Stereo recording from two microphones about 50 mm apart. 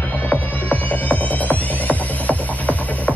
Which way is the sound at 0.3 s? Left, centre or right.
Left.